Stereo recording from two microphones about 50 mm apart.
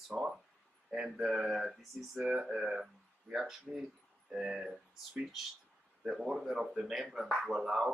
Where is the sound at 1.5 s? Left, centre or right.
Centre.